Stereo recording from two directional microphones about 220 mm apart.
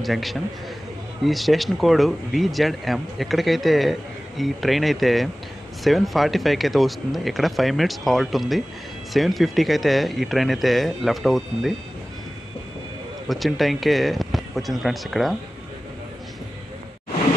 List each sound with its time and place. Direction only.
0.0 s speech: centre (ahead or behind)
13.3 s speech: centre (ahead or behind)